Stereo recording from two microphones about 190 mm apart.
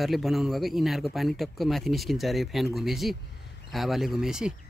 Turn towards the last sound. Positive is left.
turn(degrees=-5)  # may be behind; listen again after turning